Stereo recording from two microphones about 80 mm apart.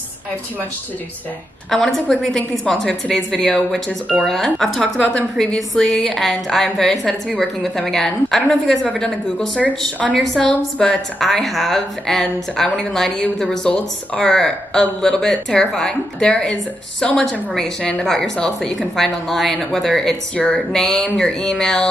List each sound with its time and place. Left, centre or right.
1.7 s a woman's voice: centre
10.4 s speech: centre
10.9 s a woman's voice: centre